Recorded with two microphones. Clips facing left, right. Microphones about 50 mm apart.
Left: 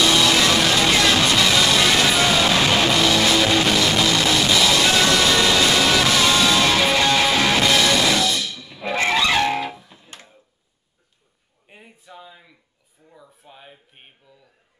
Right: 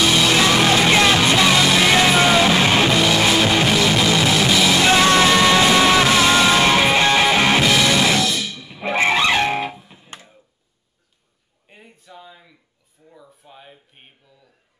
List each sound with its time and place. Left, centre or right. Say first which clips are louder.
0.0 s music: right 1 dB; centre
7.6 s music: right 1 dB; centre
11.6 s a sound: even; centre